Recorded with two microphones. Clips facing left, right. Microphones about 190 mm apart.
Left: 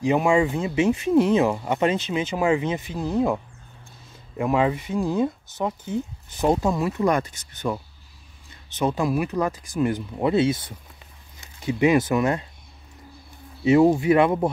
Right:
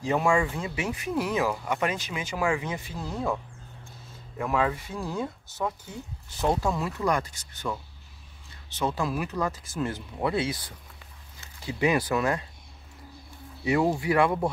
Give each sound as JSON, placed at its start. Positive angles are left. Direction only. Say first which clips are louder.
{"t": 0.0, "sound": "speech", "louder": "left 5 dB", "side_deg": 20}
{"t": 4.4, "sound": "speech", "louder": "left 5 dB", "side_deg": 20}
{"t": 13.7, "sound": "speech", "louder": "left 8 dB", "side_deg": 20}